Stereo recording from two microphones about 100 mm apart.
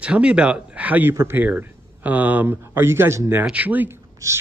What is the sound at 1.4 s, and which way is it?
Speech, 15° right (ahead or behind).